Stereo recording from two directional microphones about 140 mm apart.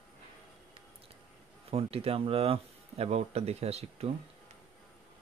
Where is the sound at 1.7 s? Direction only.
45° right (ahead or behind).